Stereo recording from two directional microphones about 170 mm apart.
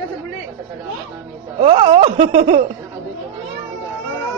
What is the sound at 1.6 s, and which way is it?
A man's voice, 35° right (ahead or behind).